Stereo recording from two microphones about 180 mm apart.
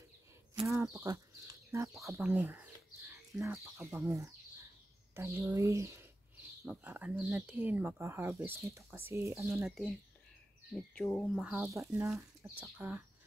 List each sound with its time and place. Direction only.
0.7 s speech: 15° right (ahead or behind)
9.7 s speech: centre (ahead or behind)
11.5 s speech: 15° right (ahead or behind)